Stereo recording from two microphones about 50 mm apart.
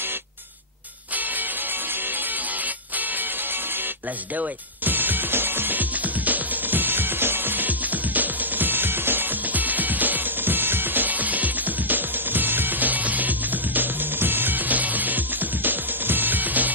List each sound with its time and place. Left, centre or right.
4.4 s music: right